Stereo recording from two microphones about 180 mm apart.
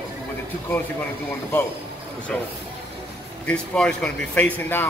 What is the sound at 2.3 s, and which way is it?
Speech, 5° left (ahead or behind).